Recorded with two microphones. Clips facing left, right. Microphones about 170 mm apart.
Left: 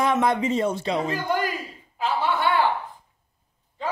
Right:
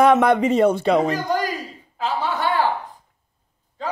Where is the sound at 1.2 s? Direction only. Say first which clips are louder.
Right 2 dB; 40° right (ahead or behind).